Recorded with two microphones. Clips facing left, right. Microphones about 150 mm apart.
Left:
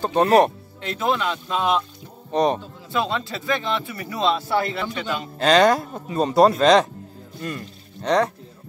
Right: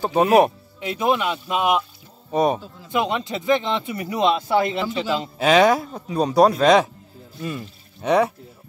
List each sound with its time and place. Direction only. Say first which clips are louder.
0.0 s speech: right 1 dB; 5° right (ahead or behind)
2.3 s speech: even; 5° right (ahead or behind)
2.9 s speech: right 2 dB; 20° right (ahead or behind)
5.4 s speech: even; 5° right (ahead or behind)